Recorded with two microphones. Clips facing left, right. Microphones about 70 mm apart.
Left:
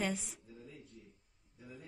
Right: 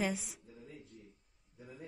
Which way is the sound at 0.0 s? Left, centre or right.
Centre.